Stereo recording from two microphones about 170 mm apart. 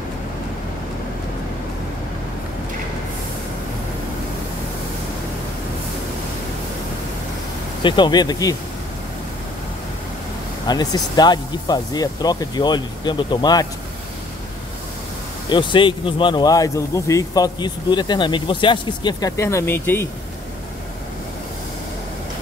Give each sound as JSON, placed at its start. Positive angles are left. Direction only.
{"t": 7.8, "sound": "speech", "side_deg": 25}
{"t": 10.7, "sound": "speech", "side_deg": 25}
{"t": 15.5, "sound": "speech", "side_deg": 30}